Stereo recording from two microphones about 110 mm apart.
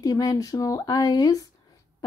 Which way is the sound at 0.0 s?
35° left (ahead or behind).